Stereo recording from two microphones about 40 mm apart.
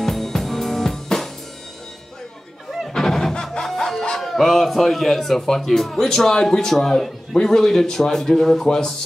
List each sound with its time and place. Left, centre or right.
0.0 s drum kit: centre
2.9 s music: centre
4.2 s a man's voice: centre